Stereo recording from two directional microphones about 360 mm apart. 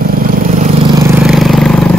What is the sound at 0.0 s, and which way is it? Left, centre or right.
Vehicle, right.